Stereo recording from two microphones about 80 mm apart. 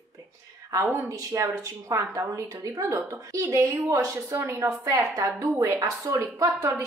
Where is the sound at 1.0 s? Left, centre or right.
Right.